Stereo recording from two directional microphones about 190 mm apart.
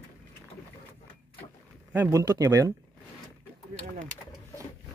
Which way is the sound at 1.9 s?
15° right (ahead or behind).